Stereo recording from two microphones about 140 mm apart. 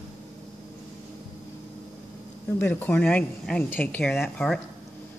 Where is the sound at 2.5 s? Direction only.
15° left (ahead or behind).